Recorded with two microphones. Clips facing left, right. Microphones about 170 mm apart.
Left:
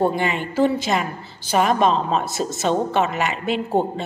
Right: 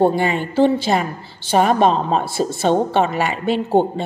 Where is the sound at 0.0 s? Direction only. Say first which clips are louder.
Right 4 dB; 35° right (ahead or behind).